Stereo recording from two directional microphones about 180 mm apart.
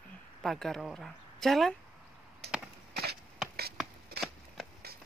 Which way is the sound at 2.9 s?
60° right (ahead or behind).